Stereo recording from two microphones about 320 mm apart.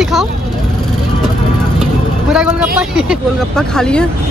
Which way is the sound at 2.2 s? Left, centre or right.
Centre.